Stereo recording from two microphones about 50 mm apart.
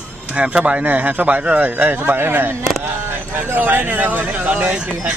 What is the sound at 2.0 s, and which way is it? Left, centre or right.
Speech, right.